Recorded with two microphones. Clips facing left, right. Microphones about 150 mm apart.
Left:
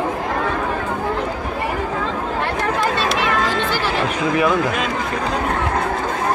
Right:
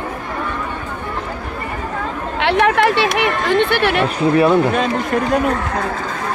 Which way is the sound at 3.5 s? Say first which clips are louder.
Right 6 dB; 65° right (ahead or behind).